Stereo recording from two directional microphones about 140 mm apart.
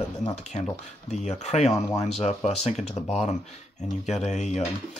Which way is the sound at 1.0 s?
55° left (ahead or behind).